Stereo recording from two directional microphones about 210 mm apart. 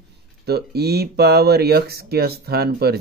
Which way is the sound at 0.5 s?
50° right (ahead or behind).